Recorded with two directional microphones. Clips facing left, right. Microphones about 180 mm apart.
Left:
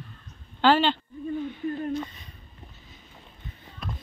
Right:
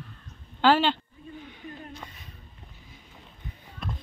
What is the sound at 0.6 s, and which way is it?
Speech, 10° right (ahead or behind).